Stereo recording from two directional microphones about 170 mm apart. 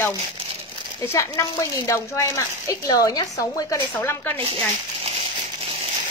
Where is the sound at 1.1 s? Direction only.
20° left (ahead or behind).